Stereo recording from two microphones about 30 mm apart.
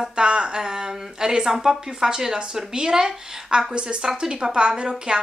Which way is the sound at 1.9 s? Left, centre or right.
Right.